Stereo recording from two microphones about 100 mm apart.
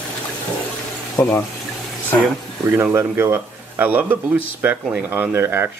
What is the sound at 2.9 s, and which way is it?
Speech, 25° right (ahead or behind).